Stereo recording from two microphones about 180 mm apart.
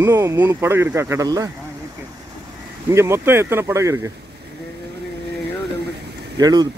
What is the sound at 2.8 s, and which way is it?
Speech, 15° right (ahead or behind).